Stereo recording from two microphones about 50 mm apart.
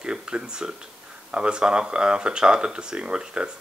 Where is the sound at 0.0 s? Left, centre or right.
Centre.